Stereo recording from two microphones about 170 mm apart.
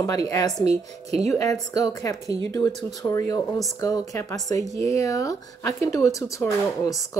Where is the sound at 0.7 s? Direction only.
40° right (ahead or behind).